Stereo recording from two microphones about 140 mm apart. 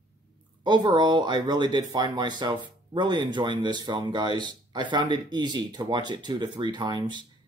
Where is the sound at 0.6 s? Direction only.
30° right (ahead or behind).